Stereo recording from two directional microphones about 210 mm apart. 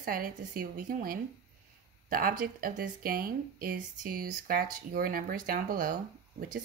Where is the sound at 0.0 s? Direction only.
40° right (ahead or behind).